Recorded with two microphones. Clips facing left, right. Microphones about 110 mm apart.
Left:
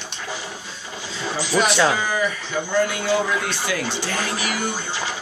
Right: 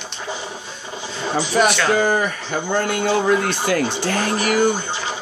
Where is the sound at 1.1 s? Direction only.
50° right (ahead or behind).